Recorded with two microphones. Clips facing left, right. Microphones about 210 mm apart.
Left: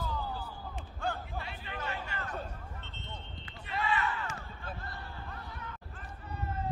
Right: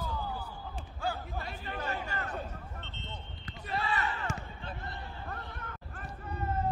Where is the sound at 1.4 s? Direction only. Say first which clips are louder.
Right 2 dB; 40° right (ahead or behind).